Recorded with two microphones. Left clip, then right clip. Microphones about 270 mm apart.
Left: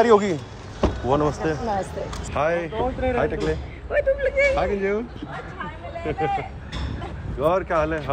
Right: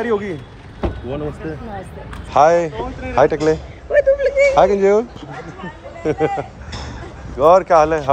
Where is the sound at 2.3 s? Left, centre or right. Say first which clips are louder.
Right 11 dB; centre.